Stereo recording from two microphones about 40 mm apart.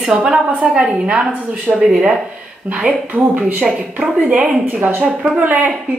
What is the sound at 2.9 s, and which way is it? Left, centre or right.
A woman's voice, right.